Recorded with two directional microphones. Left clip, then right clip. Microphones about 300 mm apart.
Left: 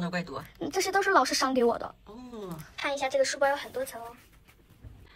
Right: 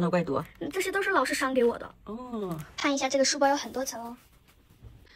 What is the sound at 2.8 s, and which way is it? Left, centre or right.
Speech, right.